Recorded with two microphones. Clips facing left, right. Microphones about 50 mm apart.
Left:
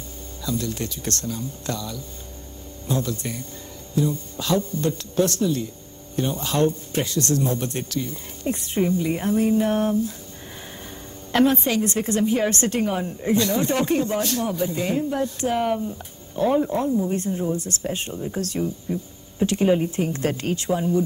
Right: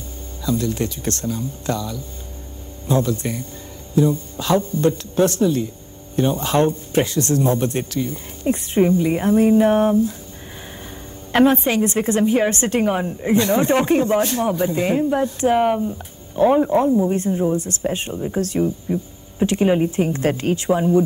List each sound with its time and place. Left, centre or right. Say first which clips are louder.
0.4 s a woman's voice: right 6 dB; right
11.3 s a woman's voice: right 4 dB; right